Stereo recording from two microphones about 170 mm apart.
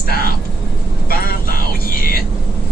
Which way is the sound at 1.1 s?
60° left (ahead or behind).